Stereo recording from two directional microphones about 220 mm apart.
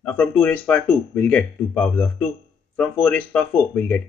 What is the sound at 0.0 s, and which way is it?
Speech, 5° left (ahead or behind).